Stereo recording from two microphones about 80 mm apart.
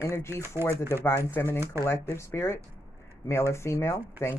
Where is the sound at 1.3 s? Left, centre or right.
Left.